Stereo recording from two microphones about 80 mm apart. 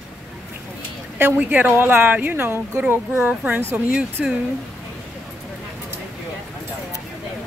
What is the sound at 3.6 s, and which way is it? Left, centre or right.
Speech, right.